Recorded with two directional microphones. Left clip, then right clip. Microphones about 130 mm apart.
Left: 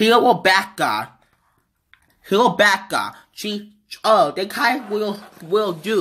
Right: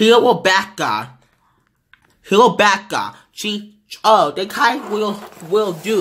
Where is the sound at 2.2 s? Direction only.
5° right (ahead or behind).